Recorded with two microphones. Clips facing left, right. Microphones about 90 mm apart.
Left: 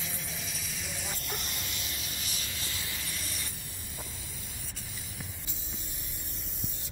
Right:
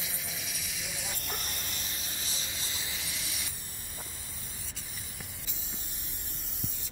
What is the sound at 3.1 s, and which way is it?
Spray, 5° right (ahead or behind).